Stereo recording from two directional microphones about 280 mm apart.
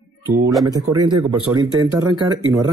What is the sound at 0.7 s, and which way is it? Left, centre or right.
Speech, centre.